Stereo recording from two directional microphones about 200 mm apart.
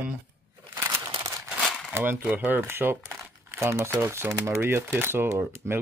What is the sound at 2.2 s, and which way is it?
Speech, 10° right (ahead or behind).